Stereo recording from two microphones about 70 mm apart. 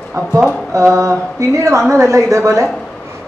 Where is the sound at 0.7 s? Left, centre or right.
Right.